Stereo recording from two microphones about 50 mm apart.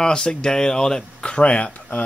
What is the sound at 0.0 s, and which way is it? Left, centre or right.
Speech, centre.